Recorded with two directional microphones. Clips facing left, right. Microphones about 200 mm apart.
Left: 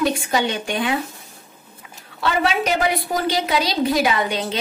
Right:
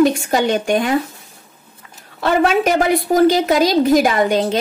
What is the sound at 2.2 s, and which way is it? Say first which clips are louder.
A woman's voice: right 6 dB; 50° right (ahead or behind).